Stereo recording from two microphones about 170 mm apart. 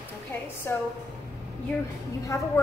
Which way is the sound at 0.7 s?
15° left (ahead or behind).